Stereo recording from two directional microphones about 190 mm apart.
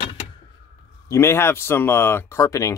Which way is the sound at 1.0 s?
15° left (ahead or behind).